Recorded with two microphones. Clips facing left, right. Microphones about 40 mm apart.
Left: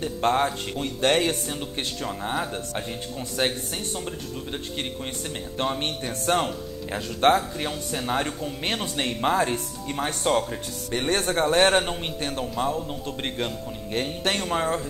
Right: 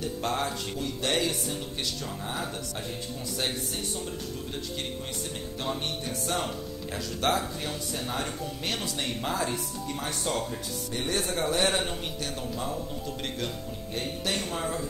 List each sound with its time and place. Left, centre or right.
0.0 s a man's voice: left
3.3 s speech: left
5.6 s a man's voice: left